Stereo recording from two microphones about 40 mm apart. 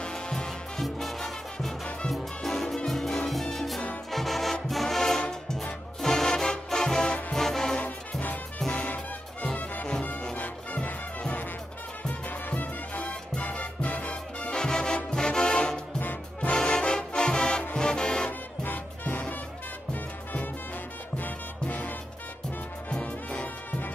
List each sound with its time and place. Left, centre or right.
0.0 s music: centre
0.7 s music: centre
10.3 s music: left
14.5 s music: centre
18.6 s music: left
21.2 s music: left
22.8 s music: left